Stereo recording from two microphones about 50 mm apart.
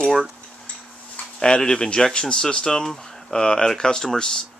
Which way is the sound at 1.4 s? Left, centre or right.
Centre.